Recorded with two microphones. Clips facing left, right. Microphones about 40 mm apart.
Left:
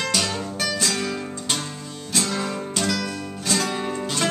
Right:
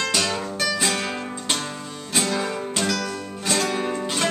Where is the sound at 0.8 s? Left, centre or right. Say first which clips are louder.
Right 1 dB; right.